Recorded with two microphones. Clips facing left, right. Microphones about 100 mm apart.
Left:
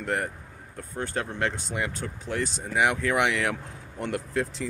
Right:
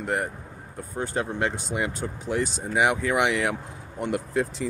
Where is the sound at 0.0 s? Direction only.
10° right (ahead or behind).